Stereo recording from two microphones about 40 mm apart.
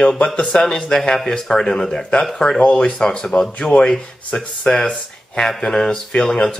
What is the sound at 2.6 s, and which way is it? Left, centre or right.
Speech, left.